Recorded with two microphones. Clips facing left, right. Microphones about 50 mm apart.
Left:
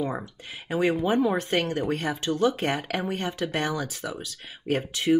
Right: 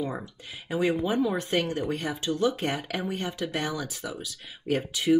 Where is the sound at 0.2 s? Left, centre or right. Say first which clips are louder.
Left 2 dB; left.